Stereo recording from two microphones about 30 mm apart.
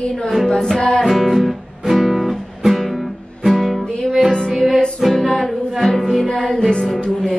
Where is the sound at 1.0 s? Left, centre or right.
Centre.